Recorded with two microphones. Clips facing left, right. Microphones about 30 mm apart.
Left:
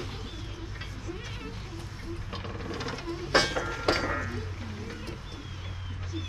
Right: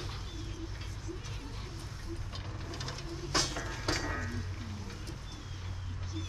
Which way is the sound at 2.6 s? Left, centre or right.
Centre.